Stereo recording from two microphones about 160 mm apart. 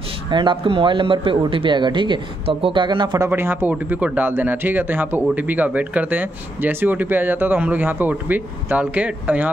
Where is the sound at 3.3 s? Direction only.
15° right (ahead or behind).